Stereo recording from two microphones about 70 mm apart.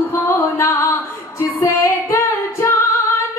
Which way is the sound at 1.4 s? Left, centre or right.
Left.